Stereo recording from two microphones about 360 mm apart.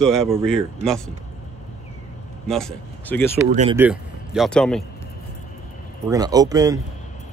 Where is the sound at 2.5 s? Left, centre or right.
Centre.